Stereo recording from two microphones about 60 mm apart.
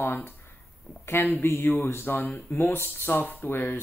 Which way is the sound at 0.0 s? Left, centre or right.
Left.